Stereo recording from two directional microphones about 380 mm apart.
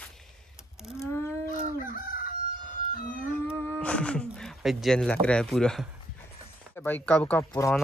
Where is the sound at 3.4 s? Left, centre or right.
Centre.